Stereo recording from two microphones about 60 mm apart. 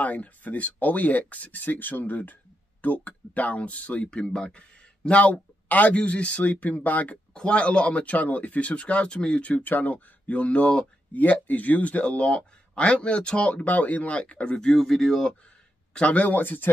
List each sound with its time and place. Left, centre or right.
0.0 s speech: left
11.1 s speech: left; by 15.3 s centre
15.9 s speech: centre